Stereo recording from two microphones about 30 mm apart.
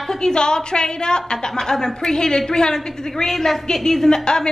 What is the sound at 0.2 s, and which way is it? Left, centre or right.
A woman's voice, left.